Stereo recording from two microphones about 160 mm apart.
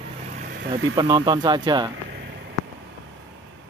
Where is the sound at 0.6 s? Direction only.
25° right (ahead or behind).